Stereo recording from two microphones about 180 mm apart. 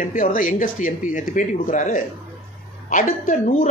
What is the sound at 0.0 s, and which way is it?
A woman's voice, 50° left (ahead or behind).